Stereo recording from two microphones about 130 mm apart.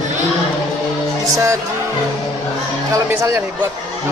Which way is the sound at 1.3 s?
20° right (ahead or behind).